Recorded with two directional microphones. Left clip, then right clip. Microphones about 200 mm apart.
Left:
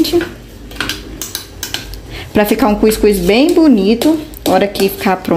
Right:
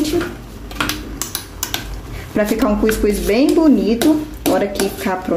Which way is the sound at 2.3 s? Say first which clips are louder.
Left 5 dB; 40° left (ahead or behind).